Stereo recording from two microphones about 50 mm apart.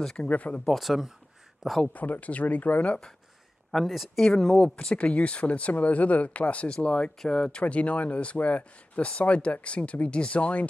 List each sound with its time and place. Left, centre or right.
0.2 s speech: left
0.7 s speech: centre
2.0 s speech: left
3.7 s speech: centre
4.9 s speech: left